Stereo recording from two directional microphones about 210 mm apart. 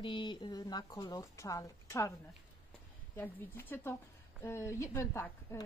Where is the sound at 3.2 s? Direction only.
10° left (ahead or behind).